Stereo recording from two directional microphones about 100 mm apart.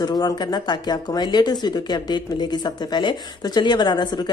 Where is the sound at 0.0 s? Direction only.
45° left (ahead or behind).